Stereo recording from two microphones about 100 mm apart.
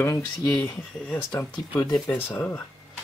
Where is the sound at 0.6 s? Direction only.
20° left (ahead or behind).